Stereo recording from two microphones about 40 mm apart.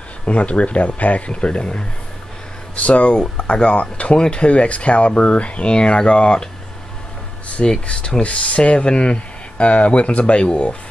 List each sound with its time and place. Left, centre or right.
0.2 s speech: left
7.8 s speech: left
8.2 s speech: left